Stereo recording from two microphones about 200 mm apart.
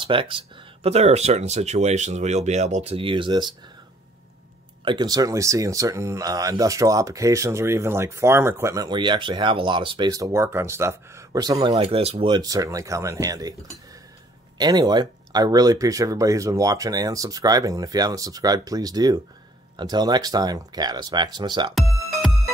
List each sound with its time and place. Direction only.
0.0 s speech: 25° right (ahead or behind)
4.8 s speech: 20° right (ahead or behind)
14.6 s speech: 20° right (ahead or behind)